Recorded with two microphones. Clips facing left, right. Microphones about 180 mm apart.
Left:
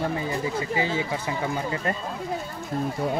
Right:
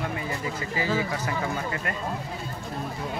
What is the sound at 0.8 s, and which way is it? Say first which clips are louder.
Speech: right 1 dB; 25° left (ahead or behind).